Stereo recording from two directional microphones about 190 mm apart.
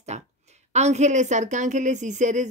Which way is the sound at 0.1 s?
35° right (ahead or behind).